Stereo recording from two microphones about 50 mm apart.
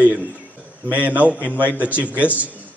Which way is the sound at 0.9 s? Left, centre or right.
Right.